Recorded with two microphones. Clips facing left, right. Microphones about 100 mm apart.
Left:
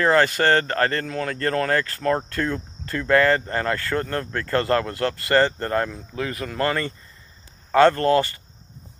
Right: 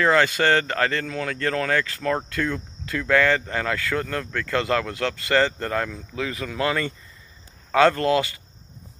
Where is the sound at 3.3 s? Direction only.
35° left (ahead or behind).